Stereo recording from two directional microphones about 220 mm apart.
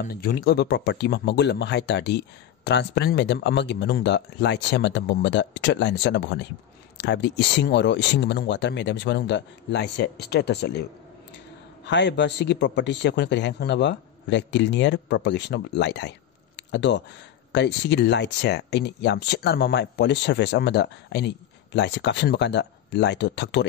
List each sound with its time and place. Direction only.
0.0 s speech: 45° left (ahead or behind)